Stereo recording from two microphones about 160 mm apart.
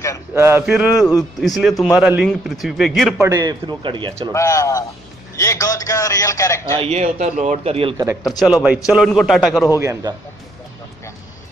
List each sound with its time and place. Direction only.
0.3 s a man's voice: 15° right (ahead or behind)
3.2 s a man's voice: 20° right (ahead or behind)
4.3 s a man's voice: 20° left (ahead or behind)
6.8 s a man's voice: 45° right (ahead or behind)
8.2 s a man's voice: centre (ahead or behind)
9.8 s a man's voice: 20° right (ahead or behind)